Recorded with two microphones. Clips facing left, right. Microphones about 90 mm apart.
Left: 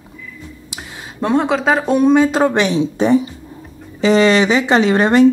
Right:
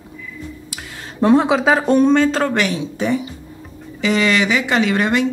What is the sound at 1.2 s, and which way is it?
Speech, centre (ahead or behind).